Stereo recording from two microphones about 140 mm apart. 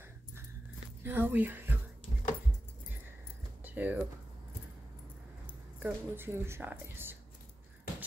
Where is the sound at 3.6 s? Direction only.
10° right (ahead or behind).